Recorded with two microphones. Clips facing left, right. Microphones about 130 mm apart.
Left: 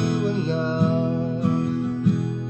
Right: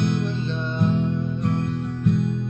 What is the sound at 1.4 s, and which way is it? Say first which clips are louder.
Music: left 3 dB; 5° left (ahead or behind).